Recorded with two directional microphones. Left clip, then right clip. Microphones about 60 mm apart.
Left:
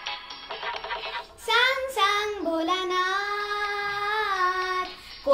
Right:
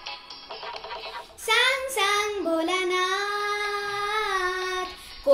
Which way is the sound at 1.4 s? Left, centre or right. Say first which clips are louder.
Even; right.